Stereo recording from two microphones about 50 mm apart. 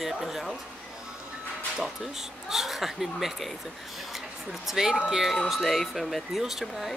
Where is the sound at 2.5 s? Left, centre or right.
Centre.